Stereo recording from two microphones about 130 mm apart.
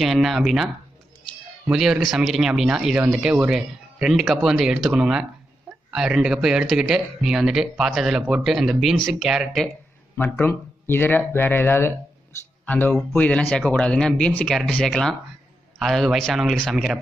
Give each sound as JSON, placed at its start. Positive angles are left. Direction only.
{"t": 0.0, "sound": "speech", "side_deg": 0}
{"t": 1.7, "sound": "speech", "side_deg": -5}
{"t": 10.1, "sound": "speech", "side_deg": 15}